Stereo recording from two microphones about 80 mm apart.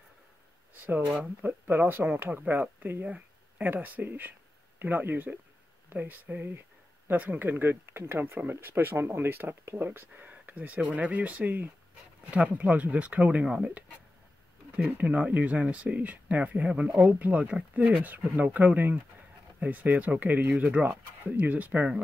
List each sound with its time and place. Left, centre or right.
0.8 s speech: right
14.9 s speech: right